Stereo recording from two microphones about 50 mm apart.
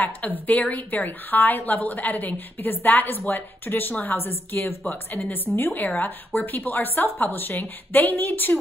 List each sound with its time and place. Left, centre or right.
0.5 s a woman's voice: left
4.8 s a woman's voice: left